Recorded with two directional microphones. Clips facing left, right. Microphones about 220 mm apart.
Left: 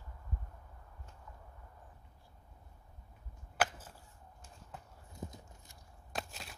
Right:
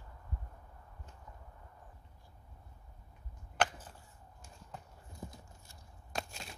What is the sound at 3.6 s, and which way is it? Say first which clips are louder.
Chop: right 1 dB; 5° left (ahead or behind).